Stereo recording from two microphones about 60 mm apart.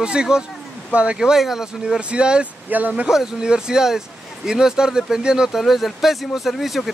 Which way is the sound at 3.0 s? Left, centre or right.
Centre.